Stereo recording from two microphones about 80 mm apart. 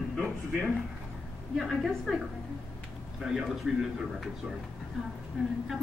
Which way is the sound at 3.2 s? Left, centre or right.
Centre.